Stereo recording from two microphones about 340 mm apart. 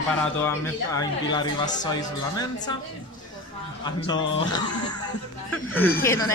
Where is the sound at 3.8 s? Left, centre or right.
Centre.